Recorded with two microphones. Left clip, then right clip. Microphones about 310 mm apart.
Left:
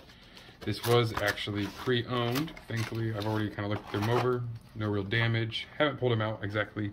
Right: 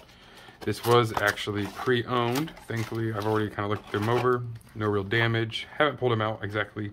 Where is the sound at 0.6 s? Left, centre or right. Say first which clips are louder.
Right 5 dB; centre.